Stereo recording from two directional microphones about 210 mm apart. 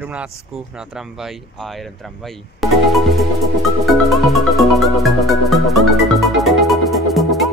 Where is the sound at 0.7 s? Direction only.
Centre (ahead or behind).